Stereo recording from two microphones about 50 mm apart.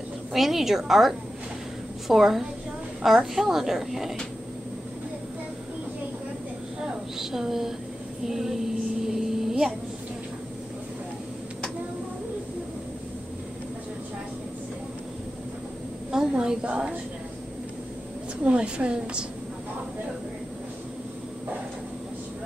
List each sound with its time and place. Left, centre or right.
0.3 s a woman's voice: centre
6.8 s a woman's voice: centre
9.0 s vehicle: centre
16.1 s a sound: centre
16.6 s a woman's voice: right
18.4 s a woman's voice: right